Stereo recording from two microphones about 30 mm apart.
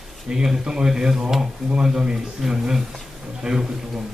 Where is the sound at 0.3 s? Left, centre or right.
Right.